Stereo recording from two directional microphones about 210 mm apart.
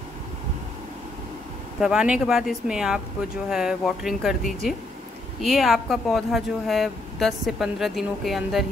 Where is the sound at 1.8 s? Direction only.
5° right (ahead or behind).